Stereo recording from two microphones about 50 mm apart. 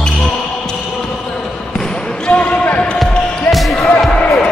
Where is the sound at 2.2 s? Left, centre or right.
Left.